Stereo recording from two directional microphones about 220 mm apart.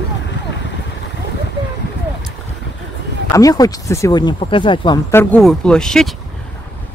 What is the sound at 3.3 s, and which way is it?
Speech, 15° left (ahead or behind).